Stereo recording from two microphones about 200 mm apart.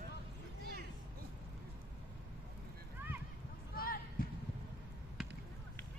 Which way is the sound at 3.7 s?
45° left (ahead or behind).